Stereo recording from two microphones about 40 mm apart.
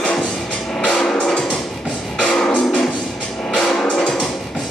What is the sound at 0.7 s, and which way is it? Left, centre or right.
Music, centre.